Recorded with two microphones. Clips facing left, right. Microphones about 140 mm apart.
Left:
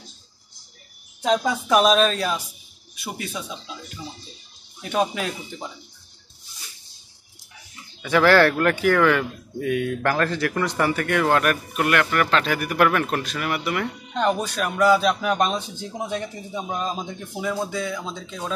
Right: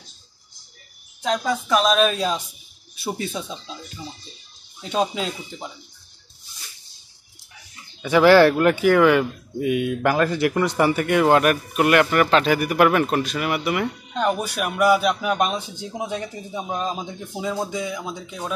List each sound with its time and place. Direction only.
1.7 s speech: 10° left (ahead or behind)
2.0 s speech: 10° right (ahead or behind)
3.0 s speech: 30° right (ahead or behind)
5.1 s speech: 20° right (ahead or behind)
8.0 s speech: 15° right (ahead or behind)